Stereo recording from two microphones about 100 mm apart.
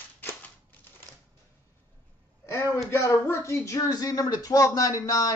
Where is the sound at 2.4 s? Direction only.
25° left (ahead or behind).